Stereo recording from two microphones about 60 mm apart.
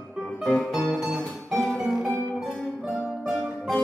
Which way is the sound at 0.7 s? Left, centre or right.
Centre.